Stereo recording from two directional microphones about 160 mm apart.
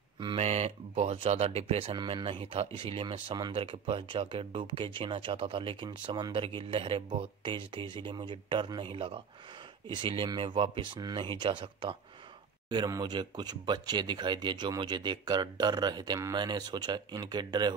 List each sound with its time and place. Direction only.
0.2 s speech: 35° right (ahead or behind)